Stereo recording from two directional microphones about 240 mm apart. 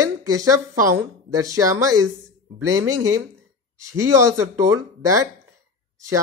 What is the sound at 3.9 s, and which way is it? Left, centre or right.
Speech, centre.